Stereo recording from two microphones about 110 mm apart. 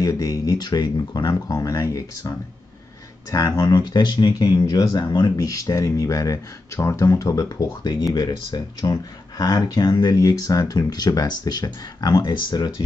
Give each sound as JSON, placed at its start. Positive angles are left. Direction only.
{"t": 0.0, "sound": "speech", "side_deg": 30}